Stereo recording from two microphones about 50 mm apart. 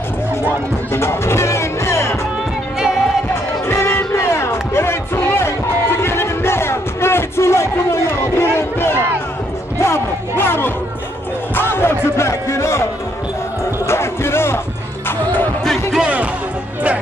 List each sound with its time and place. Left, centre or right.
0.9 s music: left
3.6 s music: left
9.8 s music: left
10.3 s a sound: left
11.5 s music: left
13.8 s music: left
15.0 s music: left
16.0 s music: right